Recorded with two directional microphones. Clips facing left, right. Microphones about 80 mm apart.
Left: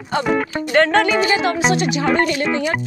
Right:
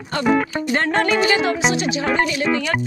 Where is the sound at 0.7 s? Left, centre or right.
Left.